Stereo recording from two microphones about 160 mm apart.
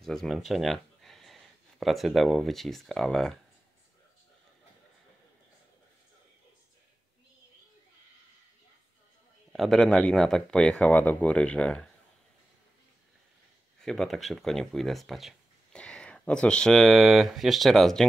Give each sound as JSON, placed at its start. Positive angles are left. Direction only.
{"t": 0.0, "sound": "speech", "side_deg": 0}
{"t": 9.5, "sound": "speech", "side_deg": 0}
{"t": 13.7, "sound": "speech", "side_deg": 0}